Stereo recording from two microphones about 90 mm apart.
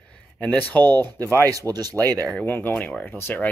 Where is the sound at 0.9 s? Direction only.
50° right (ahead or behind).